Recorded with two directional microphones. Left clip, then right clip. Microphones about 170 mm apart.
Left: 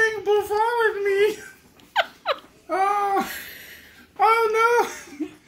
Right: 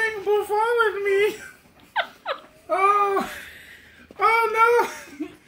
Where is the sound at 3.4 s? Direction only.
40° left (ahead or behind).